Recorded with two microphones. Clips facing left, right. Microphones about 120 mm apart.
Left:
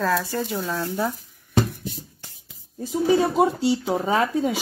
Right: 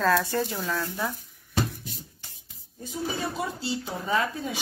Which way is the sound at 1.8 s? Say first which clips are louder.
Left 7 dB; 45° left (ahead or behind).